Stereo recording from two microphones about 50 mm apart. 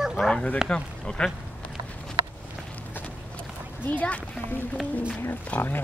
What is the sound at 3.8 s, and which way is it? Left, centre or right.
Speech, left.